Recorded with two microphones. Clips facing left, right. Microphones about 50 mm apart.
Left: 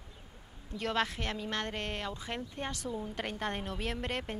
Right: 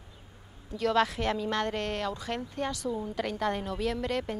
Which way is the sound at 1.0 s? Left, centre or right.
Centre.